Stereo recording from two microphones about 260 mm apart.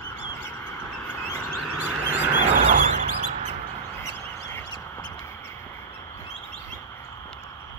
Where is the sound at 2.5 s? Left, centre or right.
Right.